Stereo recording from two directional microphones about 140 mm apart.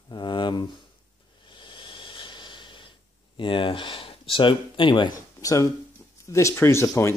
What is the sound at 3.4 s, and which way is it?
Speech, 35° left (ahead or behind).